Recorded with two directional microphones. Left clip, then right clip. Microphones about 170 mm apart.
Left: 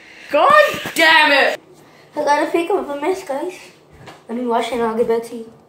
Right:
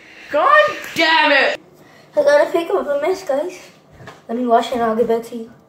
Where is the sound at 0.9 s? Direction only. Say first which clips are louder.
Left 2 dB; 30° left (ahead or behind).